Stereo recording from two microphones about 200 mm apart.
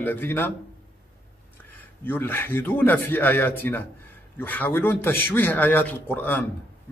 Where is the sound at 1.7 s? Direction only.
10° left (ahead or behind).